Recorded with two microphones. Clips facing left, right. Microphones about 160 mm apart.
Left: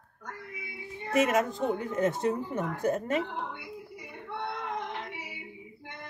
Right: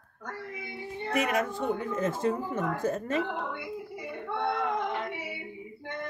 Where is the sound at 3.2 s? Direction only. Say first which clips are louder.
Right 3 dB; 90° right.